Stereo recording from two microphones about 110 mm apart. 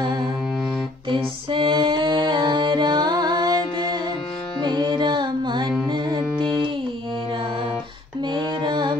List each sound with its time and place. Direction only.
1.0 s music: 50° right (ahead or behind)
4.6 s music: 45° right (ahead or behind)
8.3 s music: 45° right (ahead or behind)